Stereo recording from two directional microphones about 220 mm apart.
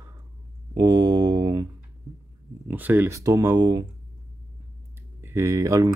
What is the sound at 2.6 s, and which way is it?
Speech, 10° right (ahead or behind).